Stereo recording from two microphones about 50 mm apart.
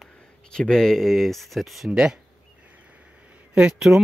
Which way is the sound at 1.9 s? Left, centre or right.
Centre.